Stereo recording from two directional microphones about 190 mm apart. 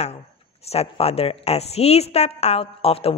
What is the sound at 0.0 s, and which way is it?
Speech, 35° left (ahead or behind).